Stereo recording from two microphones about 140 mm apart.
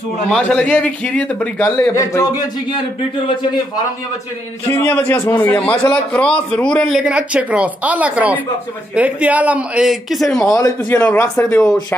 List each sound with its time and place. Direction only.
0.3 s a man's voice: 5° left (ahead or behind); by 2.8 s 25° left (ahead or behind)
4.6 s a man's voice: 15° left (ahead or behind)
7.0 s a man's voice: 5° right (ahead or behind)
10.5 s a man's voice: 25° left (ahead or behind)
10.9 s a man's voice: 15° left (ahead or behind)